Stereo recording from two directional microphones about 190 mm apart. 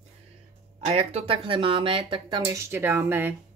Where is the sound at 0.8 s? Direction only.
30° right (ahead or behind); by 3.3 s 10° right (ahead or behind).